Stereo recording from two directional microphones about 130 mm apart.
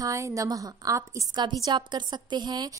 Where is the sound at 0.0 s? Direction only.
25° right (ahead or behind).